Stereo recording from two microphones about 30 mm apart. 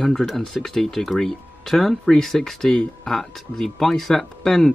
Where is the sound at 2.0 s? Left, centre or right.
Centre.